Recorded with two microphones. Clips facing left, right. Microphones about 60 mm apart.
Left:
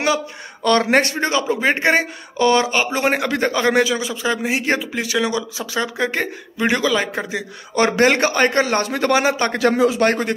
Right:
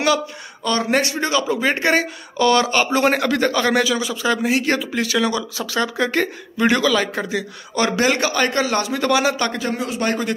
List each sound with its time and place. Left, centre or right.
0.7 s speech: left
0.9 s speech: left
7.7 s a man's voice: left
8.6 s a man's voice: left
9.6 s speech: left
10.0 s speech: left